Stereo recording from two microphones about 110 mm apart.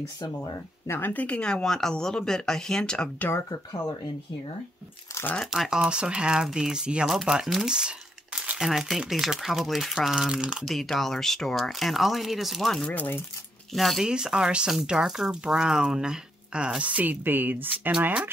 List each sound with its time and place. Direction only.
0.2 s speech: 40° left (ahead or behind)
0.8 s speech: 20° left (ahead or behind)
5.5 s speech: 5° right (ahead or behind)
12.8 s speech: 15° left (ahead or behind)
13.7 s speech: centre (ahead or behind); by 18.3 s 15° right (ahead or behind)